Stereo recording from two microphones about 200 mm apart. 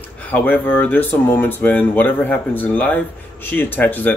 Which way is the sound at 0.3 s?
10° left (ahead or behind).